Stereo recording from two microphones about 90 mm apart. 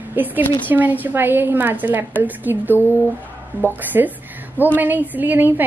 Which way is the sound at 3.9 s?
30° right (ahead or behind).